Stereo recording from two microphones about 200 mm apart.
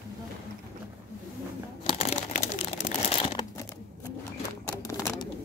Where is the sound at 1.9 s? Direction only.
35° left (ahead or behind).